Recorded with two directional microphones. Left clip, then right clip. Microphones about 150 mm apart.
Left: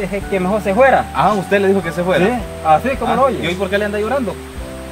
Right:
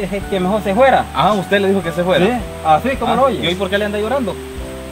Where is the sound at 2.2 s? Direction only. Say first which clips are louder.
Even; 10° left (ahead or behind).